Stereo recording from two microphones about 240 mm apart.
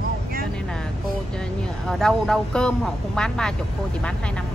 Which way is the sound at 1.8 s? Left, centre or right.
Centre.